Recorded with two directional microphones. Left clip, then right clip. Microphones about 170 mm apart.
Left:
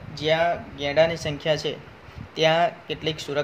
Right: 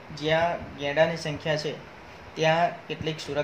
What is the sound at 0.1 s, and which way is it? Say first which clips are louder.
Speech: left 3 dB; 55° left (ahead or behind).